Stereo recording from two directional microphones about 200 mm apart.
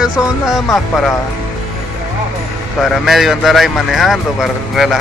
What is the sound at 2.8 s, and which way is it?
A man's voice, centre (ahead or behind).